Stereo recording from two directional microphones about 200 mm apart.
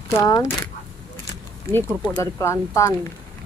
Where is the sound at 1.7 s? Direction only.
10° left (ahead or behind).